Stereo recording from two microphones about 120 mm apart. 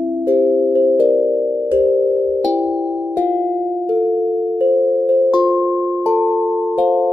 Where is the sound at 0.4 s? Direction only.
20° right (ahead or behind).